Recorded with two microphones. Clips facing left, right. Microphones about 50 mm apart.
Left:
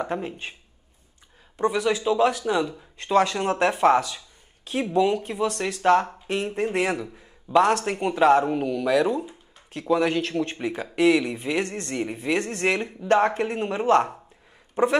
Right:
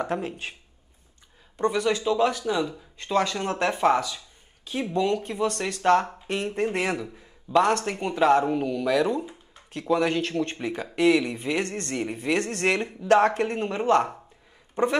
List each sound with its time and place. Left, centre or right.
0.1 s speech: centre
1.6 s a man's voice: centre
2.1 s speech: left
4.9 s a man's voice: centre
7.2 s a man's voice: centre
13.6 s a man's voice: centre